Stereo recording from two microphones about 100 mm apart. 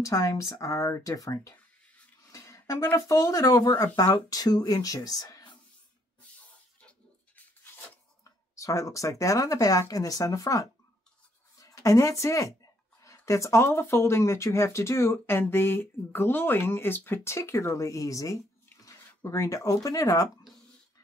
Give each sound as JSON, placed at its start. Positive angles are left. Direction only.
{"t": 0.0, "sound": "speech", "side_deg": 35}
{"t": 6.8, "sound": "a sound", "side_deg": 10}
{"t": 8.2, "sound": "speech", "side_deg": 35}